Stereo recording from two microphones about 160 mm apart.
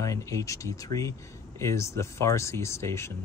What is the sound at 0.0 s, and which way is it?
Speech, 20° left (ahead or behind).